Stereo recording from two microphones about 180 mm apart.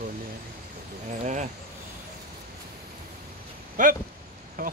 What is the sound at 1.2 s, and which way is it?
Speech, 40° right (ahead or behind).